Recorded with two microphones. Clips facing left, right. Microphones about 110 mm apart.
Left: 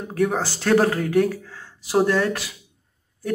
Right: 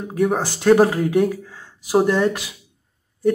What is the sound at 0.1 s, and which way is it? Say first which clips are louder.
Speech: right 2 dB; 10° right (ahead or behind).